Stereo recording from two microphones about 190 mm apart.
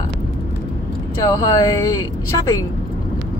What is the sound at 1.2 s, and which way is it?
Speech, 20° left (ahead or behind).